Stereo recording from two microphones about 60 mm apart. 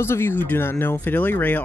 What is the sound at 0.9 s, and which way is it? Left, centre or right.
Speech, left.